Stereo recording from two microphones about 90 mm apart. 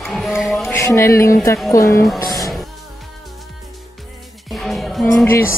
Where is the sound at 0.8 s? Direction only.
35° left (ahead or behind).